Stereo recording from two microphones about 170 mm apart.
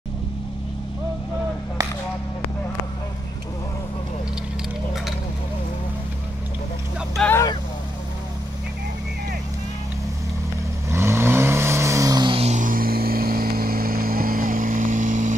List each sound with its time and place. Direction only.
7.2 s vehicle: 10° left (ahead or behind)
10.9 s vehicle: 15° right (ahead or behind); by 15.3 s 50° right (ahead or behind)